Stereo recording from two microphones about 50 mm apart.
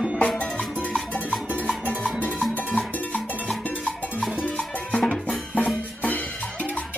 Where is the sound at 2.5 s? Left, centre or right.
Left.